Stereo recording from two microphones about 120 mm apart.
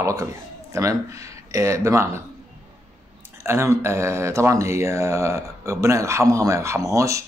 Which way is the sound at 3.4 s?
20° right (ahead or behind).